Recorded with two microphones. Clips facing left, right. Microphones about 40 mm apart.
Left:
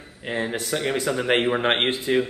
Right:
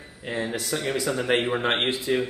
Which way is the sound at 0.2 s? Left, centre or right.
Left.